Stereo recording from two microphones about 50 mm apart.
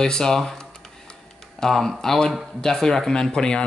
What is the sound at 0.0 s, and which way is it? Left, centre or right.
Speech, centre.